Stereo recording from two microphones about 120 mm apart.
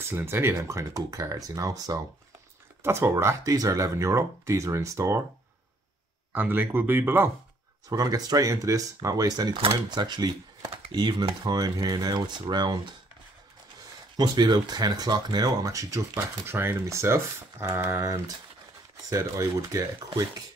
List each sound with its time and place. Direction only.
0.1 s speech: 20° right (ahead or behind)
2.8 s speech: 20° right (ahead or behind)
6.3 s speech: 15° right (ahead or behind)
7.9 s speech: 30° right (ahead or behind)
9.6 s speech: 45° right (ahead or behind)
14.1 s speech: 35° right (ahead or behind)